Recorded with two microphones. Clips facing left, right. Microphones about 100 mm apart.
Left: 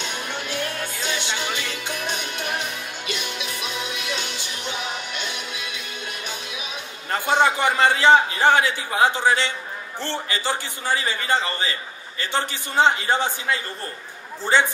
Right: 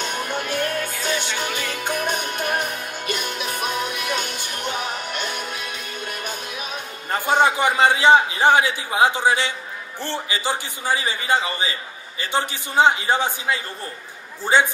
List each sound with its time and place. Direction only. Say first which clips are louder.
0.0 s music: right 4 dB; 45° right (ahead or behind)
7.4 s a man's voice: right 2 dB; 15° right (ahead or behind)